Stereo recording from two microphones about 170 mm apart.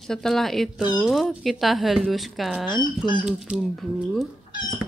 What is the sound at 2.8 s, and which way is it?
Speech, 25° left (ahead or behind).